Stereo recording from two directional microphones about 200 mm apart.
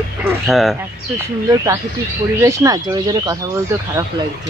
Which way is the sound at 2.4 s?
15° right (ahead or behind).